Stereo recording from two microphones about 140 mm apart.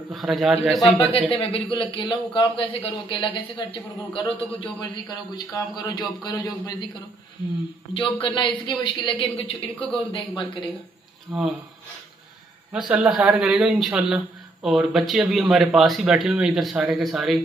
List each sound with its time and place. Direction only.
0.1 s a man's voice: centre (ahead or behind)
1.3 s a woman's voice: 40° left (ahead or behind)
5.3 s a man's voice: 25° left (ahead or behind)
7.9 s a woman's voice: 40° left (ahead or behind)
11.3 s a man's voice: centre (ahead or behind)
12.7 s a man's voice: 5° right (ahead or behind)